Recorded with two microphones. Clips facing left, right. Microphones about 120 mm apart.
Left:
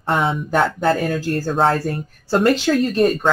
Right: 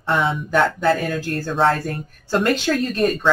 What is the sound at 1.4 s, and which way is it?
Speech, 40° left (ahead or behind).